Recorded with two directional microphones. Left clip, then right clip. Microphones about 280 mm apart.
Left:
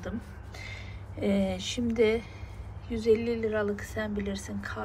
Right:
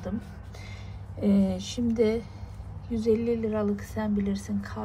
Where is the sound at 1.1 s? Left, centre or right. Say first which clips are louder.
Right 1 dB; centre.